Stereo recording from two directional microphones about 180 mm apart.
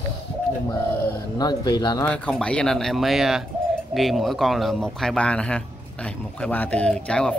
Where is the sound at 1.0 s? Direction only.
20° left (ahead or behind).